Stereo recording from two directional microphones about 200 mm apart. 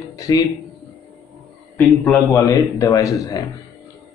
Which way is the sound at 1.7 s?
10° left (ahead or behind).